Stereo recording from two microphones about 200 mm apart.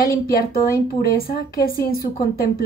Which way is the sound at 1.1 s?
50° left (ahead or behind).